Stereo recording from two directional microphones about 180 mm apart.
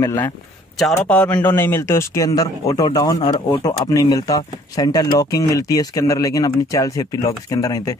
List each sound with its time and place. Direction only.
0.0 s a man's voice: 15° left (ahead or behind)
0.7 s a man's voice: 5° left (ahead or behind)